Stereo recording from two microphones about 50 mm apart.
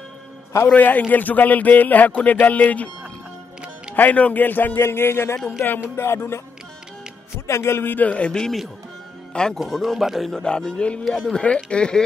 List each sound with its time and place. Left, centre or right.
0.8 s a man's voice: left
3.9 s a man's voice: left
4.7 s speech: left
7.3 s speech: left
7.8 s a man's voice: left
8.1 s speech: centre
9.6 s speech: centre
10.4 s a man's voice: centre
11.1 s speech: centre
11.3 s speech: centre